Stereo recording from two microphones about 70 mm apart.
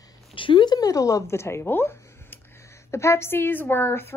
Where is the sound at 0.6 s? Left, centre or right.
Left.